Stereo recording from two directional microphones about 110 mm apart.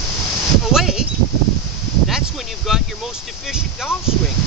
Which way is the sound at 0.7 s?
5° right (ahead or behind).